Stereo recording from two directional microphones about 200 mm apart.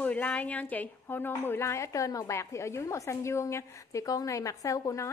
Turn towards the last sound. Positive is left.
turn(degrees=15)  # may be behind; listen again after turning